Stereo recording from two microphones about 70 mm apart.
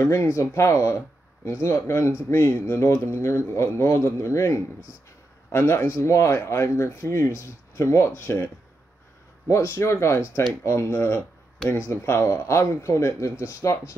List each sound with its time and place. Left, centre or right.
0.0 s speech: left
9.6 s speech: left